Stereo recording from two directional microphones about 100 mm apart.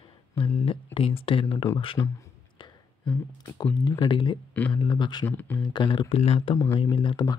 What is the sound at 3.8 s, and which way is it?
Speech, 50° left (ahead or behind).